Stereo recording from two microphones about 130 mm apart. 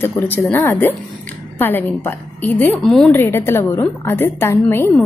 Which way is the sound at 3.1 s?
20° left (ahead or behind).